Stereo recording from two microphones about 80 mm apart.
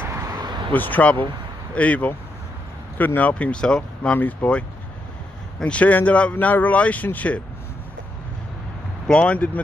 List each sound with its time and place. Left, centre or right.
0.2 s a sound: right
0.7 s speech: left
4.2 s speech: left
5.6 s speech: centre
9.0 s speech: centre